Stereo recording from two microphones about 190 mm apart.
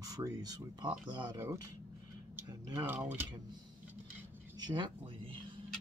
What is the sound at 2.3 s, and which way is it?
Speech, 10° right (ahead or behind).